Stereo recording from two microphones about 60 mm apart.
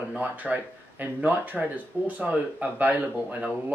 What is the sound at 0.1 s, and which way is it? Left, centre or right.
Speech, right.